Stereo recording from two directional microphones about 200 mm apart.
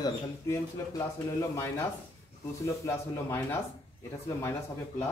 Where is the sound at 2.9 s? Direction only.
15° left (ahead or behind).